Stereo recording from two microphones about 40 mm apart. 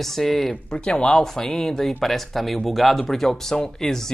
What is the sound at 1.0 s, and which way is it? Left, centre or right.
Speech, centre.